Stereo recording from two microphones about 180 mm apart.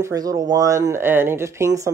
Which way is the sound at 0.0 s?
20° right (ahead or behind).